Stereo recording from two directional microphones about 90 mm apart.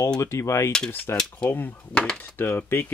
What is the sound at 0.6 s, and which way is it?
Mechanisms, 5° left (ahead or behind).